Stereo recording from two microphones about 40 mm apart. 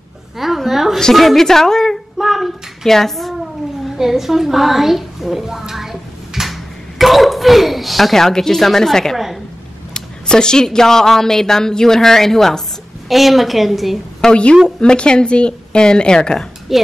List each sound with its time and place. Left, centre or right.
0.4 s a sound: centre
1.1 s speech: centre
2.1 s child singing: centre
2.9 s a child's voice: centre
3.9 s a woman's voice: centre
9.1 s a sound: centre
9.9 s speech: centre
13.1 s a woman's voice: centre
14.3 s speech: left
16.7 s a woman's voice: centre